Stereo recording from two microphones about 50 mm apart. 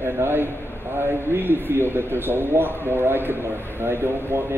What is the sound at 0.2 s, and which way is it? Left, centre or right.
Speech, right.